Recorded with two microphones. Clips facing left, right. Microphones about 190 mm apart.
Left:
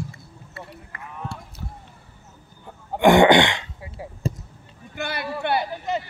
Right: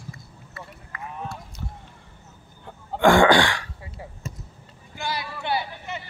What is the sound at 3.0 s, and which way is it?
Throat clearing, 20° left (ahead or behind).